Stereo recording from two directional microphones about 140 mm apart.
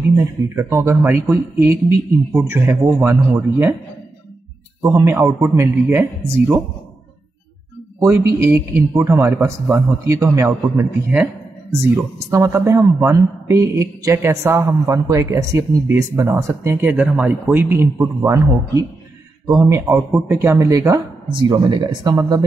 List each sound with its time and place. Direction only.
0.1 s a man's voice: 20° right (ahead or behind)
4.8 s a man's voice: 15° right (ahead or behind)
5.9 s a man's voice: 15° right (ahead or behind)
8.0 s speech: 20° right (ahead or behind)
18.2 s speech: 25° right (ahead or behind)
21.3 s speech: 35° right (ahead or behind)